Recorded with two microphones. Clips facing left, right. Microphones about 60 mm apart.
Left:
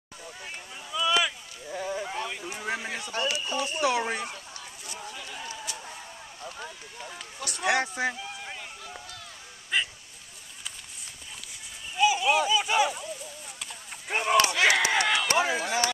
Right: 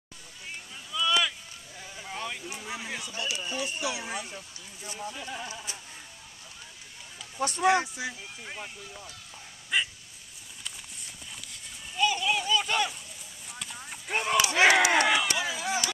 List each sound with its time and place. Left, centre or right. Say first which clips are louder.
0.9 s rowboat: left 1 dB; centre
1.7 s a sound: left 15 dB; left
2.1 s a sound: left 2 dB; centre
2.6 s a sound: left 10 dB; left
3.1 s speech: left 6 dB; left
5.2 s speech: right 1 dB; right
6.4 s speech: left 12 dB; left
7.3 s speech: right 10 dB; right
7.6 s speech: even; left
9.7 s speech: even; centre
12.0 s speech: left 4 dB; centre
13.6 s clip-clop: right 1 dB; centre
14.5 s speech: right 2 dB; right
15.2 s speech: left 5 dB; left